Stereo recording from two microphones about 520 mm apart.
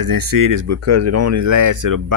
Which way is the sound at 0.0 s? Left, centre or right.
Right.